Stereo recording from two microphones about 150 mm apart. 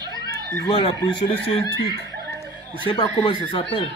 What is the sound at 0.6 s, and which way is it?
Speech, 30° left (ahead or behind).